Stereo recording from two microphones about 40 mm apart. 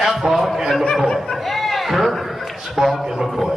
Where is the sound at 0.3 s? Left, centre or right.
Centre.